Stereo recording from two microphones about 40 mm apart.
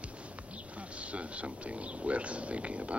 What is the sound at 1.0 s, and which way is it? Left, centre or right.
Speech, right.